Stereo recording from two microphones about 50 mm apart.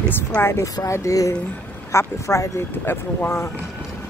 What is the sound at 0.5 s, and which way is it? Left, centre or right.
Speech, left.